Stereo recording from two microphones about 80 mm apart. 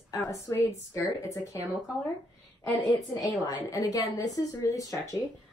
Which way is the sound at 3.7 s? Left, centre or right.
Left.